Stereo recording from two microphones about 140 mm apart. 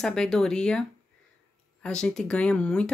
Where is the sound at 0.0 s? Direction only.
5° left (ahead or behind).